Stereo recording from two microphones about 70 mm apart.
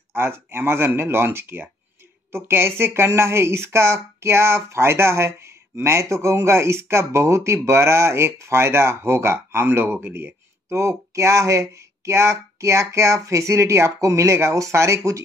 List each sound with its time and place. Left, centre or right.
0.1 s speech: right